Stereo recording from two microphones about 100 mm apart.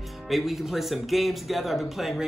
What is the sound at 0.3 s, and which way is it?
Speech, centre (ahead or behind).